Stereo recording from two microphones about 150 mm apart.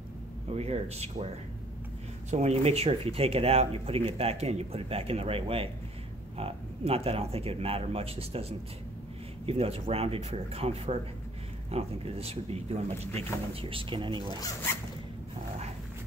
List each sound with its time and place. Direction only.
0.5 s speech: 45° right (ahead or behind)
2.3 s speech: 45° right (ahead or behind)